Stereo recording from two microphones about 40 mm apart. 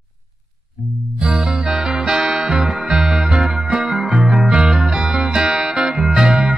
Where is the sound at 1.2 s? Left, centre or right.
Centre.